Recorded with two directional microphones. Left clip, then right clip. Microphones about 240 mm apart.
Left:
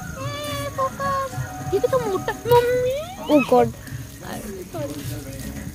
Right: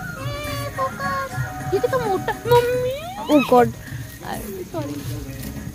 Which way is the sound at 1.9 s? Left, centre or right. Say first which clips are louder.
Right 1 dB; centre.